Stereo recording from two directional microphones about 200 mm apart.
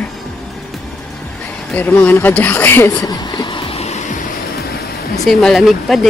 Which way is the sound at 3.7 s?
35° left (ahead or behind).